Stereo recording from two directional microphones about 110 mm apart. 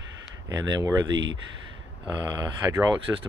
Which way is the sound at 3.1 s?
20° right (ahead or behind).